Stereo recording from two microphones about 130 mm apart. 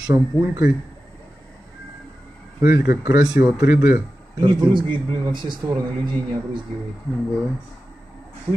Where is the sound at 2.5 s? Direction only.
20° right (ahead or behind).